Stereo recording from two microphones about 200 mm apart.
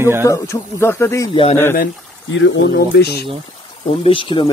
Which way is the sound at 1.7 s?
55° left (ahead or behind).